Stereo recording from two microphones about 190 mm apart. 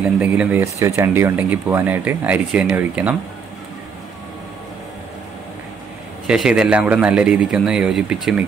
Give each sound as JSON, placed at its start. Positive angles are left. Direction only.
{"t": 0.2, "sound": "speech", "side_deg": -10}
{"t": 6.2, "sound": "a man's voice", "side_deg": -5}